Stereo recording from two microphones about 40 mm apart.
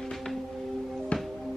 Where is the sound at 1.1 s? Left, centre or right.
Left.